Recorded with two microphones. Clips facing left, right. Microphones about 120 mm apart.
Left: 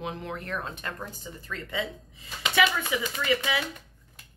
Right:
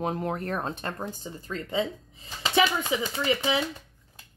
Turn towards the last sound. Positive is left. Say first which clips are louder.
# right 2 dB
turn(degrees=-30)  # may be behind; listen again after turning